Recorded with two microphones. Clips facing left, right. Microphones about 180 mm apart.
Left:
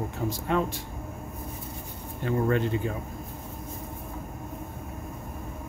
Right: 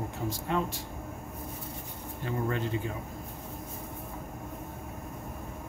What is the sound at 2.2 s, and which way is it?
Speech, 65° left (ahead or behind).